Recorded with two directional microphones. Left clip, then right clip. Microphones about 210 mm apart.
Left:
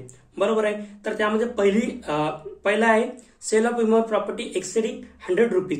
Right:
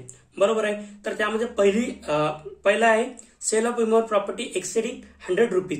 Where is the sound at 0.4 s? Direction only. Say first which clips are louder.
Even; 5° right (ahead or behind).